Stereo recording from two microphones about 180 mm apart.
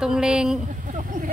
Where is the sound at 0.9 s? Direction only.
45° right (ahead or behind).